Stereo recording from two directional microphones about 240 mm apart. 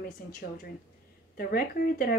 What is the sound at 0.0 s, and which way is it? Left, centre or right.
Speech, left.